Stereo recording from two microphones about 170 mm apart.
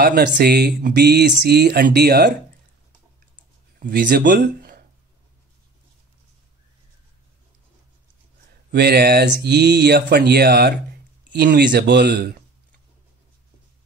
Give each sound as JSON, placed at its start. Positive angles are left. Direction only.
{"t": 0.0, "sound": "speech", "side_deg": -70}
{"t": 3.8, "sound": "speech", "side_deg": -55}
{"t": 8.7, "sound": "speech", "side_deg": -65}
{"t": 9.4, "sound": "speech", "side_deg": -80}
{"t": 11.3, "sound": "speech", "side_deg": -85}